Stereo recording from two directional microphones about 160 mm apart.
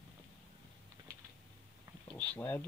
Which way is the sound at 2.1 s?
10° left (ahead or behind).